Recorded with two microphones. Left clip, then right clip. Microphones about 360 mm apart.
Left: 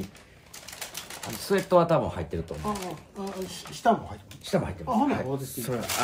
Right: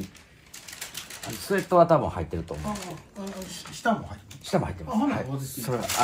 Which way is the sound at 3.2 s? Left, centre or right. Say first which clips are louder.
Left 3 dB; centre.